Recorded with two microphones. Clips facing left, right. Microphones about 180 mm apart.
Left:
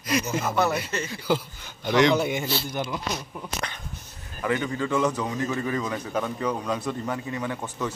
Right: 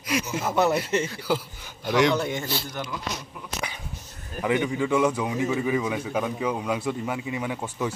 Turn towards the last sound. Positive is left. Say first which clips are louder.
# right 1 dB
turn(degrees=-10)  # may be behind; listen again after turning